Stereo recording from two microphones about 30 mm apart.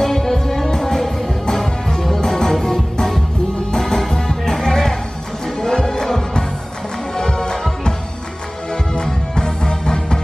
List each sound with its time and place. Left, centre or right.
0.0 s music: centre
8.9 s music: left